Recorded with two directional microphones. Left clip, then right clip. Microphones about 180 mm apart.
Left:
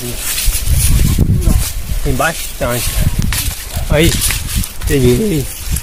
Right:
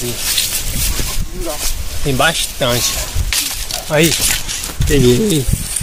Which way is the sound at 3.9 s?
60° left (ahead or behind).